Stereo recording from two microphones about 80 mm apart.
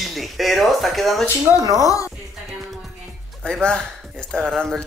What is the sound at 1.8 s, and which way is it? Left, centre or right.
Speech, left.